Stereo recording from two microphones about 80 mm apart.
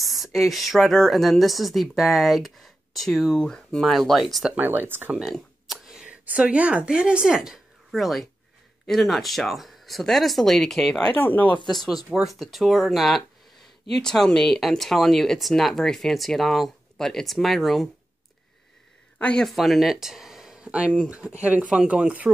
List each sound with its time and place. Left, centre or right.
0.0 s speech: centre
4.6 s speech: right
5.2 s a sound: centre
6.2 s speech: centre
11.1 s speech: left
11.7 s speech: centre
19.1 s speech: centre
19.4 s speech: centre